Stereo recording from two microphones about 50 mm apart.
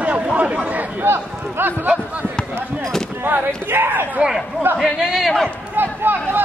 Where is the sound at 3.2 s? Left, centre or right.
Right.